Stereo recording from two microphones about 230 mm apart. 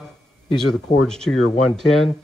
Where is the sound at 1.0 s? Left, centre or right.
Centre.